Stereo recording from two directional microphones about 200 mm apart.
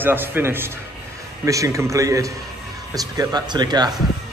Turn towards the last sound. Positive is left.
turn(degrees=-20)  # may be behind; listen again after turning